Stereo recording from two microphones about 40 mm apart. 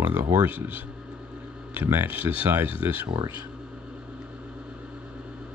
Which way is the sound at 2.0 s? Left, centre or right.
Right.